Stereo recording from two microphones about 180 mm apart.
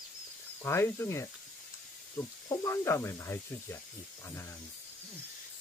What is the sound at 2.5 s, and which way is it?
Speech, 15° left (ahead or behind).